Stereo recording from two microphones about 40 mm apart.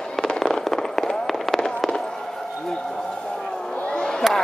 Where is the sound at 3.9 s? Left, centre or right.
Centre.